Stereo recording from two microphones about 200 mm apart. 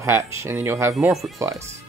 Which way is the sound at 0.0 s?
15° right (ahead or behind).